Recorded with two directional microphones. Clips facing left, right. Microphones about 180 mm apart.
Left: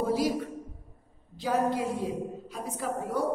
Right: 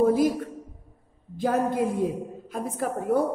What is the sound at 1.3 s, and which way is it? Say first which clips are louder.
A woman's voice: right 3 dB; 50° right (ahead or behind).